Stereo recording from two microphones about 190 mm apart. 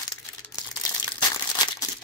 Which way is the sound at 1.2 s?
20° left (ahead or behind).